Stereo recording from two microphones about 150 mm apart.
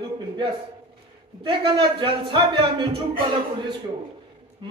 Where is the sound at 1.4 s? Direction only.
35° right (ahead or behind).